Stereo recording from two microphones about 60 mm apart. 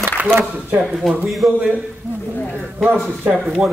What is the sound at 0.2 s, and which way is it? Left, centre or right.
Speech, right.